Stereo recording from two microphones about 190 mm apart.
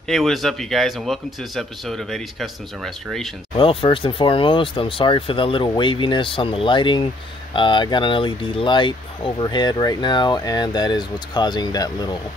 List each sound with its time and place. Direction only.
0.1 s speech: centre (ahead or behind)
3.5 s speech: 30° left (ahead or behind)